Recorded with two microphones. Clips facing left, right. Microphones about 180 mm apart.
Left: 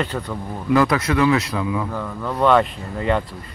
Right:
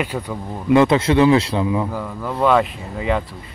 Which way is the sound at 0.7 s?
25° right (ahead or behind).